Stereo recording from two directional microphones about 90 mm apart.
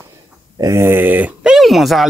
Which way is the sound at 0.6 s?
30° right (ahead or behind).